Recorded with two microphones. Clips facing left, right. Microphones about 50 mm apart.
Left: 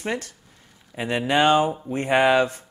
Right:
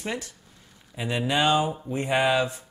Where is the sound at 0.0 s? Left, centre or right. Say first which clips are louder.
Left 4 dB; left.